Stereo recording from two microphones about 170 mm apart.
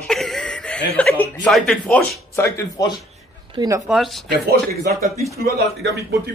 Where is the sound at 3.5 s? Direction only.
20° right (ahead or behind).